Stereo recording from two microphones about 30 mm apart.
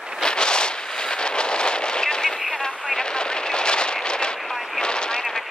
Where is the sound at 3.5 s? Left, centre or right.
Left.